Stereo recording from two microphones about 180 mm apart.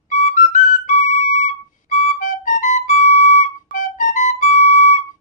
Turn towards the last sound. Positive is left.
turn(degrees=40)  # may be behind; listen again after turning